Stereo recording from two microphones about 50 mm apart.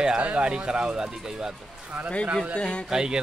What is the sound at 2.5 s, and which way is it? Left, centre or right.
Speech, left.